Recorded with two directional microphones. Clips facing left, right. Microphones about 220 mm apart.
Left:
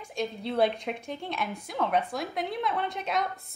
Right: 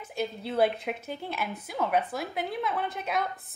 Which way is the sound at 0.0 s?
5° right (ahead or behind).